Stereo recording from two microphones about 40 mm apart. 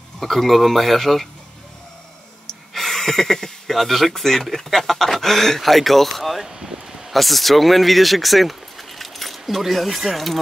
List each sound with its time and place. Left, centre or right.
0.2 s speech: centre
2.7 s speech: centre
6.4 s a sound: centre
7.1 s speech: centre